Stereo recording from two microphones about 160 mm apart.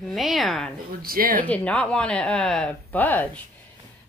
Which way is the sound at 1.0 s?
65° right (ahead or behind).